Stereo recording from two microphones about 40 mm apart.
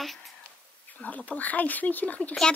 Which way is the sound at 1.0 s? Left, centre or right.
Left.